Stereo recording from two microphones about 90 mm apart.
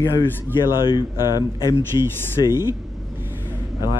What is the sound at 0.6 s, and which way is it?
Speech, 60° left (ahead or behind).